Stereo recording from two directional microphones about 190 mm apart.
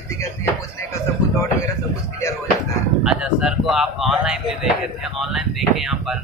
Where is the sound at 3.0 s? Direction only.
5° right (ahead or behind).